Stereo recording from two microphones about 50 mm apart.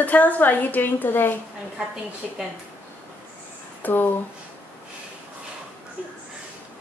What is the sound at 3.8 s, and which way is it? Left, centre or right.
Speech, left.